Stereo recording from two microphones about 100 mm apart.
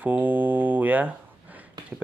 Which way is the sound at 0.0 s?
15° right (ahead or behind).